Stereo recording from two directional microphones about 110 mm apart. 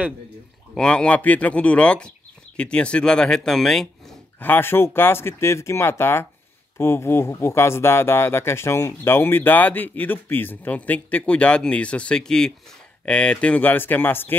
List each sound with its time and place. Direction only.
0.7 s speech: 10° left (ahead or behind)
4.4 s speech: 20° left (ahead or behind)